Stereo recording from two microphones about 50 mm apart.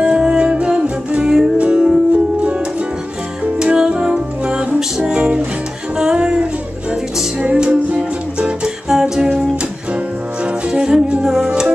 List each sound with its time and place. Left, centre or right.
0.0 s music: centre
3.5 s music: centre